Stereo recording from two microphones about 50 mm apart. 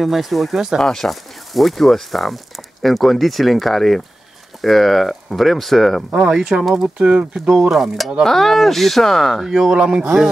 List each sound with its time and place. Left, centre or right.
0.0 s speech: centre
0.7 s speech: centre
6.5 s speech: right; by 8.1 s centre
8.2 s speech: centre
9.5 s speech: centre